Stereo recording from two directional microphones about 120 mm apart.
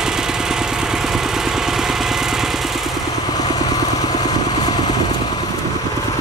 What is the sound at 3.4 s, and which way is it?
Vehicle, 30° left (ahead or behind).